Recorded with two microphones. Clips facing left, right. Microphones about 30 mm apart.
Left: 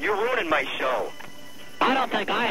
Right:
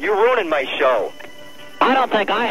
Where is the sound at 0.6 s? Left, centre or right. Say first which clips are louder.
Right 8 dB; centre.